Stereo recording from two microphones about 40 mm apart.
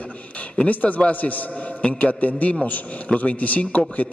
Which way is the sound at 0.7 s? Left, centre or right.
Left.